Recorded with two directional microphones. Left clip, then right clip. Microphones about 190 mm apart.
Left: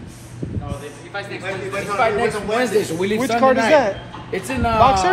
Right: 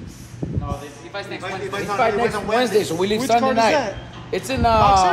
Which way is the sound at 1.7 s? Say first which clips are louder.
Left 1 dB; 55° right (ahead or behind).